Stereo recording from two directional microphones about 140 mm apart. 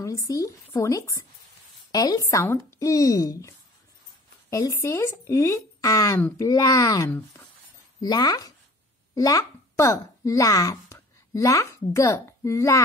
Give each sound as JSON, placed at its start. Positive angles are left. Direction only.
{"t": 0.0, "sound": "a child's voice", "side_deg": 25}